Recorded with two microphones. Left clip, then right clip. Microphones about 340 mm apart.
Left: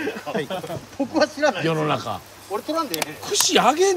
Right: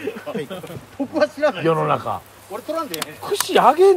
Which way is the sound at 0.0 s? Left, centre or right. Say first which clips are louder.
Left 1 dB; left.